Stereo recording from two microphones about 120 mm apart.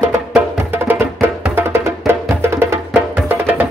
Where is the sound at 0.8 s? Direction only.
20° right (ahead or behind).